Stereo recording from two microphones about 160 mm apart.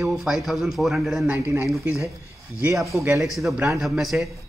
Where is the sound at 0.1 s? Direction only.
Centre (ahead or behind).